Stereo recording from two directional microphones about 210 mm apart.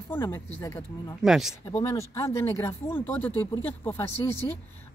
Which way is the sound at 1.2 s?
Centre (ahead or behind).